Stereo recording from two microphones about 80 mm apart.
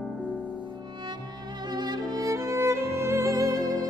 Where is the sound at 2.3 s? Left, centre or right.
Right.